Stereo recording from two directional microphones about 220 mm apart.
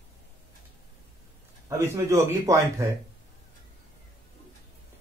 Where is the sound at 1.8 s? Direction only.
10° right (ahead or behind).